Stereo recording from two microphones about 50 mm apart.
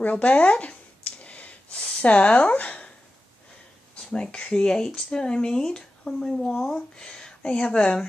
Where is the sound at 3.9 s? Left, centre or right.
Centre.